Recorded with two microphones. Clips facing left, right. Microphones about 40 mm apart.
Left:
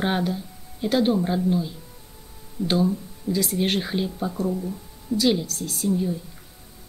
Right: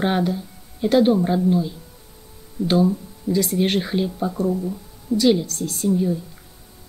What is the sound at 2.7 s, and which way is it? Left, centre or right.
Speech, centre.